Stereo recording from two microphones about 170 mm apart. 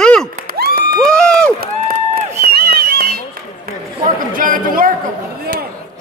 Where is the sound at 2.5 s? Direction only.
65° right (ahead or behind).